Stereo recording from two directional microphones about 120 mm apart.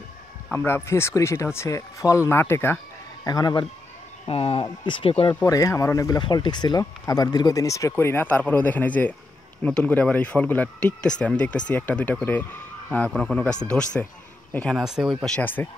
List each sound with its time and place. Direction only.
0.5 s speech: 15° left (ahead or behind)
3.3 s speech: 35° left (ahead or behind)
4.3 s speech: 55° left (ahead or behind)
5.3 s speech: 25° left (ahead or behind); by 14.8 s 10° left (ahead or behind)
14.8 s speech: 5° right (ahead or behind)
15.2 s speech: 10° left (ahead or behind)